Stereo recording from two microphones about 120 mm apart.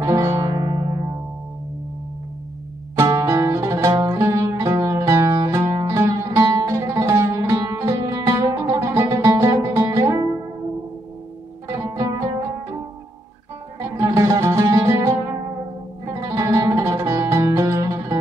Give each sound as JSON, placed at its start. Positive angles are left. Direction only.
{"t": 0.0, "sound": "music", "side_deg": -25}
{"t": 3.0, "sound": "music", "side_deg": -30}
{"t": 11.6, "sound": "music", "side_deg": -30}
{"t": 13.7, "sound": "music", "side_deg": -30}